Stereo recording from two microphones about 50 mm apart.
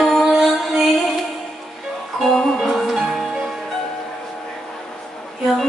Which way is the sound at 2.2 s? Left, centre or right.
Centre.